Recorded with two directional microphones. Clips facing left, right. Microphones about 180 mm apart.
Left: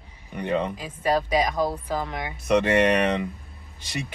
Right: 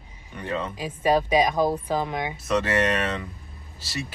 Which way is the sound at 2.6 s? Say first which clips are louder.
Left 4 dB; 15° left (ahead or behind).